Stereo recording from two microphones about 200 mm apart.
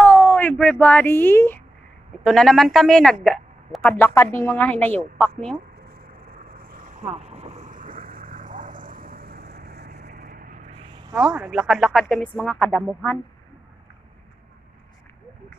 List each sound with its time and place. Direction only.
0.0 s speech: 5° left (ahead or behind)
6.3 s vehicle: 45° right (ahead or behind)
11.1 s a woman's voice: 5° right (ahead or behind)